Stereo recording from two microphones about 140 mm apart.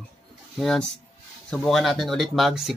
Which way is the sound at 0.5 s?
Centre (ahead or behind).